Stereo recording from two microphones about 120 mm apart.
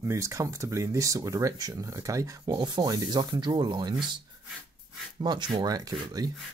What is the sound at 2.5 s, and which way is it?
Speech, 40° right (ahead or behind).